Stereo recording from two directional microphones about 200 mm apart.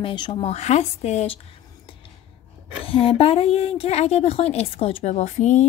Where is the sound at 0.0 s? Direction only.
20° left (ahead or behind).